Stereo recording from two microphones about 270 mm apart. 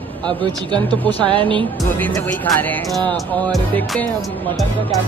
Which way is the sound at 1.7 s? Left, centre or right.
Centre.